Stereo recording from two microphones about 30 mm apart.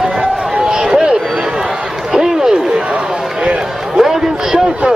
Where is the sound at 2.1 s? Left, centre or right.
Centre.